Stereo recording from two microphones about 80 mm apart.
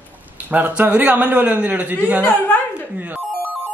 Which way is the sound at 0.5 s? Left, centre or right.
Right.